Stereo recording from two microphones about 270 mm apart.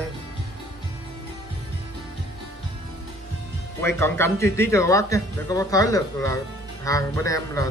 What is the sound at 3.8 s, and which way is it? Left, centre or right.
Speech, centre.